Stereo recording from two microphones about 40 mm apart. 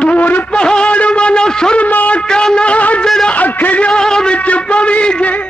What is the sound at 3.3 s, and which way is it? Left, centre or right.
Music, left.